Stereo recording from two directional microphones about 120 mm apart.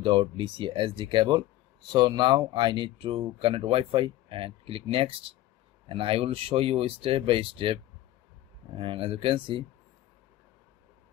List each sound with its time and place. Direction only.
0.0 s speech: 45° right (ahead or behind)